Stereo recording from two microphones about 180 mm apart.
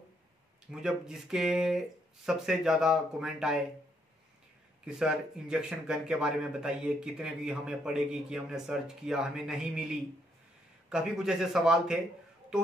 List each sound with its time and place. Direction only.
0.7 s speech: 5° right (ahead or behind)
4.8 s speech: 5° right (ahead or behind)